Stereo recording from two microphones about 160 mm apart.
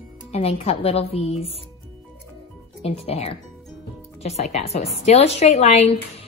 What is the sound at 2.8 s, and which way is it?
A woman's voice, 40° left (ahead or behind).